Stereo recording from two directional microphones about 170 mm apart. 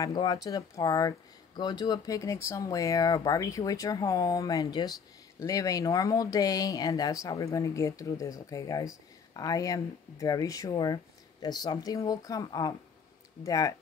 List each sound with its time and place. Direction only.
0.0 s speech: 25° left (ahead or behind)